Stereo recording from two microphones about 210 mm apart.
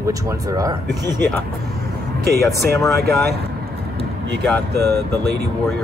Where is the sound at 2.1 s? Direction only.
50° right (ahead or behind).